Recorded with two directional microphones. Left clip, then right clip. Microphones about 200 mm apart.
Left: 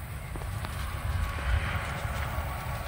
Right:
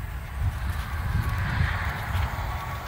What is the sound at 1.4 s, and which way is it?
Boat, 40° left (ahead or behind).